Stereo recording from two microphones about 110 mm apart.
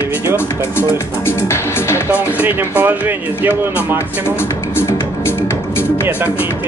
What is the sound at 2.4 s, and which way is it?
Speech, 15° right (ahead or behind).